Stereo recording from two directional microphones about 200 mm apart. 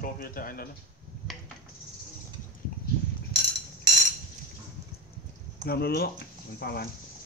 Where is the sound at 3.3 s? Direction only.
50° left (ahead or behind).